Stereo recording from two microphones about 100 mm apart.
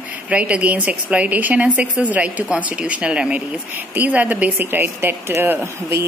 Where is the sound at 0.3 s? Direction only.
10° right (ahead or behind).